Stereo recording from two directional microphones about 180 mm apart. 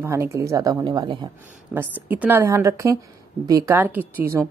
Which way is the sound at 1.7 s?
10° right (ahead or behind).